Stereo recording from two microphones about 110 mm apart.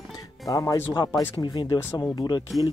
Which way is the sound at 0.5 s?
30° left (ahead or behind).